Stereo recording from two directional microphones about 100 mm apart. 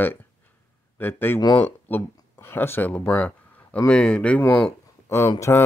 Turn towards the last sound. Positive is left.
turn(degrees=35)  # may be behind; listen again after turning